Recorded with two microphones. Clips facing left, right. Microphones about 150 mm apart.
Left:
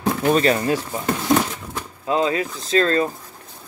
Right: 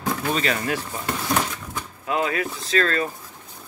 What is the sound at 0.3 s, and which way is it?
Speech, 35° left (ahead or behind).